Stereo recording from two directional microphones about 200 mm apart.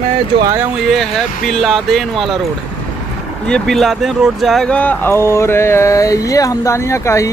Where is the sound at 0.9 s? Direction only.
Centre (ahead or behind).